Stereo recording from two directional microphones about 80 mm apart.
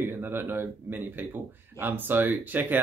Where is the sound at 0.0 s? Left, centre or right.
Right.